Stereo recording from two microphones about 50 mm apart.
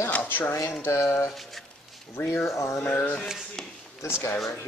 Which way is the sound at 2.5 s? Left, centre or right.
Left.